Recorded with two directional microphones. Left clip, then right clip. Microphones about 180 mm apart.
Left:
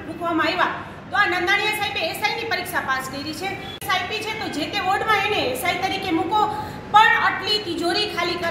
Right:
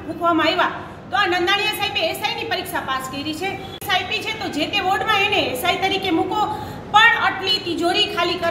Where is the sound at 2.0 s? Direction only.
40° right (ahead or behind).